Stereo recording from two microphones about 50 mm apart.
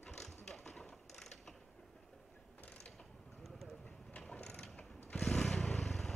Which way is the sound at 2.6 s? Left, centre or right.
Left.